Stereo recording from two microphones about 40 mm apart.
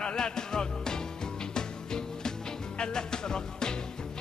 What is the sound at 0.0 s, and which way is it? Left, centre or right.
Music, centre.